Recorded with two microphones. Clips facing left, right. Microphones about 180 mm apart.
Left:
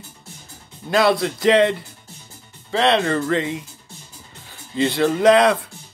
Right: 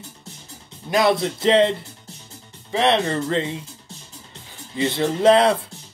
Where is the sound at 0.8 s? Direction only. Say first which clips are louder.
Left 1 dB; 20° right (ahead or behind).